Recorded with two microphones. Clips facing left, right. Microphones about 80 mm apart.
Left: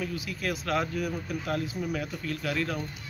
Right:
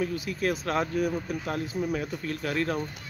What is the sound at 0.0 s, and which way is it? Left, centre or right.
Speech, right.